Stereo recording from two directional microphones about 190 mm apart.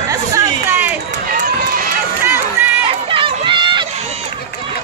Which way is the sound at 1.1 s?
45° right (ahead or behind).